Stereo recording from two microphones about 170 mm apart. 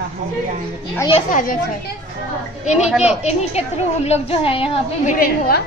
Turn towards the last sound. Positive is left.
turn(degrees=60)  # may be behind; listen again after turning